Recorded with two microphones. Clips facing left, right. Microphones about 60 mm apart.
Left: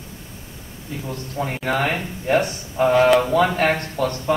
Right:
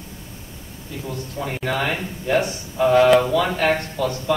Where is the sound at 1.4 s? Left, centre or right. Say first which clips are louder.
Left 2 dB; left.